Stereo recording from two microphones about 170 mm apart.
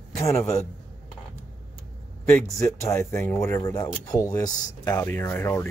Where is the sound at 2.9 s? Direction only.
15° left (ahead or behind).